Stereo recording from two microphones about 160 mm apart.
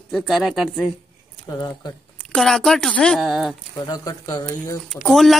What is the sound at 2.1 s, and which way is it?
Speech, 5° left (ahead or behind).